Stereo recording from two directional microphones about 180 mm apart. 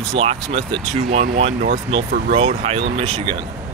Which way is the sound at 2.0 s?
55° right (ahead or behind).